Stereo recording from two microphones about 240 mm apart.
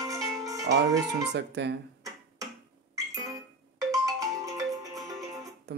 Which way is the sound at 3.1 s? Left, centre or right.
Centre.